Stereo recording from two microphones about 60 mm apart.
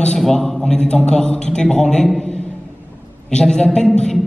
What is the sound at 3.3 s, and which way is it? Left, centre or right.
Speech, centre.